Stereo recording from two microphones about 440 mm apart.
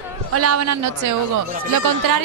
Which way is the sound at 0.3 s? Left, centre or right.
Right.